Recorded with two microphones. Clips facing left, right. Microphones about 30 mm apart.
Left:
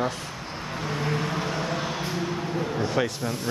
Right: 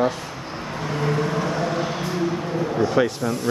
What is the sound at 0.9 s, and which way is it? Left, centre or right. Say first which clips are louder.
Vehicle: right 5 dB; centre.